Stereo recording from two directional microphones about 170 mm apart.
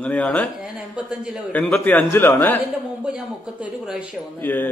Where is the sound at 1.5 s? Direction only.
5° left (ahead or behind).